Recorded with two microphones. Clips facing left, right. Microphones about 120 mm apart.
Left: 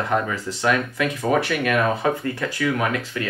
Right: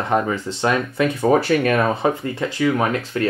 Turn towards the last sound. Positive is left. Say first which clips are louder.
# right 3 dB
turn(degrees=-30)  # may be behind; listen again after turning